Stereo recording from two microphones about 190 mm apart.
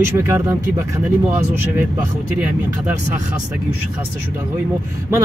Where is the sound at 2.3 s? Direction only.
5° right (ahead or behind).